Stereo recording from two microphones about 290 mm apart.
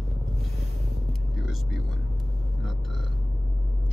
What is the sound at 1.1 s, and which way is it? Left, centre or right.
Vehicle, centre.